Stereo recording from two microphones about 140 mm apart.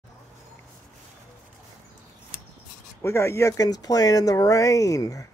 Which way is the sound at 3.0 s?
20° left (ahead or behind).